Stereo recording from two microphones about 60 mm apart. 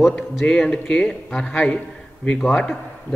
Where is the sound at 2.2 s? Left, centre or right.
Centre.